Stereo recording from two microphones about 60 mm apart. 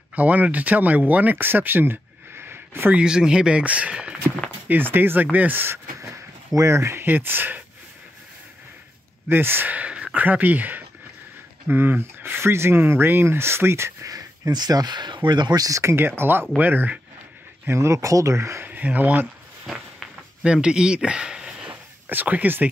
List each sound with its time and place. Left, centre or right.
0.1 s speech: right
2.9 s speech: centre
4.6 s speech: right
5.9 s a sound: right
7.1 s speech: right
9.3 s speech: right
14.0 s speech: right
15.8 s speech: right
17.6 s speech: right
18.6 s speech: right
19.6 s walk: centre
20.4 s speech: centre
22.1 s speech: right